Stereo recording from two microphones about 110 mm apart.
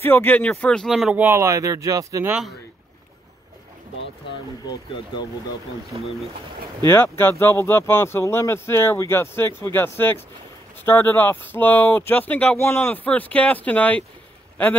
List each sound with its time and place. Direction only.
0.0 s speech: 15° left (ahead or behind); by 1.1 s centre (ahead or behind)
1.1 s speech: 20° right (ahead or behind)
5.9 s speech: 55° right (ahead or behind)
6.9 s speech: 20° left (ahead or behind)